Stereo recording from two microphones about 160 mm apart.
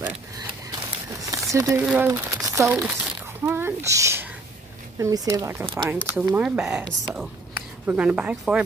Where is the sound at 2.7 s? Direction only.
15° right (ahead or behind).